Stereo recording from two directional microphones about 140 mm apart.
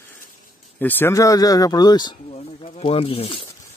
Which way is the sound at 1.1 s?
25° left (ahead or behind).